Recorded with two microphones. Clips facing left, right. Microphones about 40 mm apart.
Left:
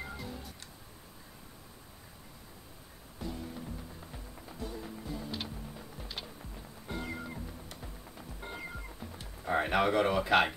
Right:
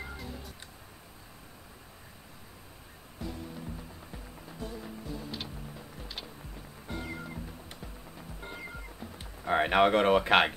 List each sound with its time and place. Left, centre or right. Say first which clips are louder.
6.9 s music: even; centre
8.4 s music: even; centre
9.5 s speech: right 4 dB; right